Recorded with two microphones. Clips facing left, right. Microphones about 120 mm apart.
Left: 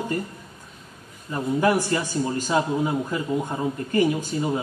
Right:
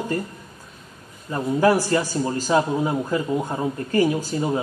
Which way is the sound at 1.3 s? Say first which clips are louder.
Right 3 dB; 30° right (ahead or behind).